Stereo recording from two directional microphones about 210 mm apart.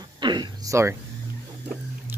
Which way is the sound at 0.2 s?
20° right (ahead or behind).